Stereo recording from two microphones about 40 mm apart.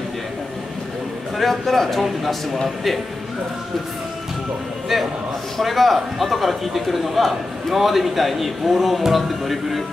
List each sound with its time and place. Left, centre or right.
1.4 s a man's voice: centre
5.6 s a man's voice: centre